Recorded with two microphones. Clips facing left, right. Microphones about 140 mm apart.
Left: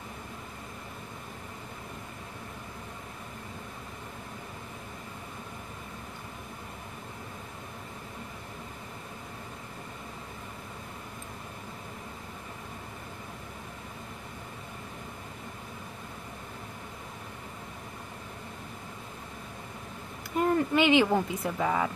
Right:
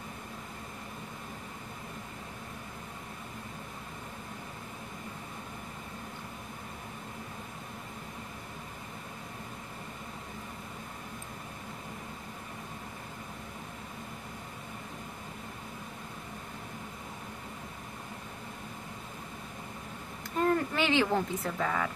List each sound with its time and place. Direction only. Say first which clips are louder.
20.3 s speech: left 3 dB; 15° left (ahead or behind)